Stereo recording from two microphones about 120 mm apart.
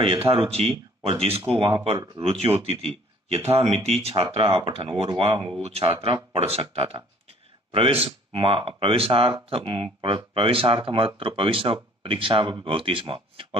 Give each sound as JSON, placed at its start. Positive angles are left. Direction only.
{"t": 0.0, "sound": "speech", "side_deg": -50}